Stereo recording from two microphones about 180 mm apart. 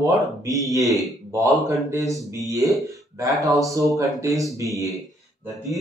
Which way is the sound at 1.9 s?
20° right (ahead or behind).